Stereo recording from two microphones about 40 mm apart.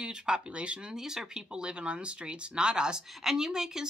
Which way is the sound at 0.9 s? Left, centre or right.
Centre.